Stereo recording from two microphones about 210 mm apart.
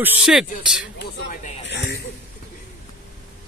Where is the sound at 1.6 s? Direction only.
55° left (ahead or behind).